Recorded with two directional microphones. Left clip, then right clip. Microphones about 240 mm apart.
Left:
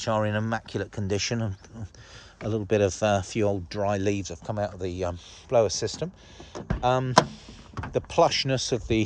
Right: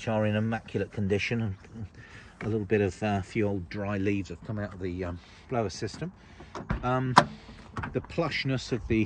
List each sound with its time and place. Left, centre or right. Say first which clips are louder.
0.0 s speech: left 3 dB; centre
2.4 s speech: left 3 dB; centre
7.2 s a sound: left 1 dB; left
8.1 s speech: left 10 dB; centre